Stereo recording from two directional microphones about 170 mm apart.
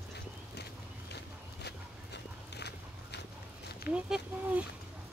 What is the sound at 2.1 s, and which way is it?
Walk, 80° left.